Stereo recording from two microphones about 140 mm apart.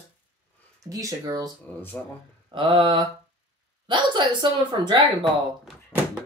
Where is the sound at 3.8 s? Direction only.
35° right (ahead or behind).